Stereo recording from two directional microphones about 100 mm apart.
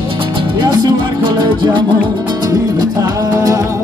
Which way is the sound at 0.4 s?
50° right (ahead or behind).